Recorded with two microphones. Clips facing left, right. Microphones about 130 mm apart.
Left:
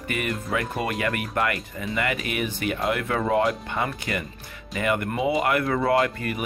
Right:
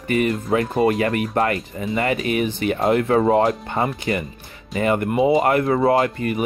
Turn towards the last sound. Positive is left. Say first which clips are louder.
# right 4 dB
turn(degrees=-25)  # may be behind; listen again after turning